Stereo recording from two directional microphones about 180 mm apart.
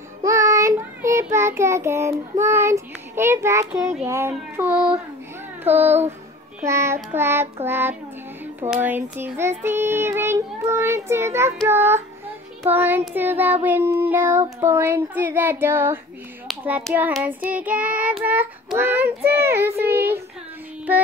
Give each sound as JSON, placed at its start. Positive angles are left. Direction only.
{"t": 0.2, "sound": "child singing", "side_deg": -15}
{"t": 5.6, "sound": "speech", "side_deg": -10}
{"t": 6.6, "sound": "child singing", "side_deg": -15}
{"t": 16.4, "sound": "a sound", "side_deg": -10}
{"t": 16.9, "sound": "child singing", "side_deg": -10}